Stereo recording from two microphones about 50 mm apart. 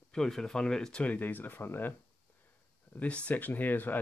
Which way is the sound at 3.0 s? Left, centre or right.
Left.